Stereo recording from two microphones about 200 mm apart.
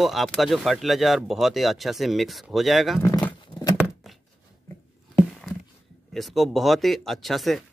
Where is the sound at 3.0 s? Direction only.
15° left (ahead or behind).